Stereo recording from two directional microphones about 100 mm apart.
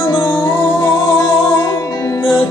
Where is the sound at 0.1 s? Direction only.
45° left (ahead or behind).